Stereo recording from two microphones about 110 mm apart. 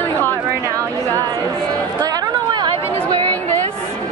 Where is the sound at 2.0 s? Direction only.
35° right (ahead or behind).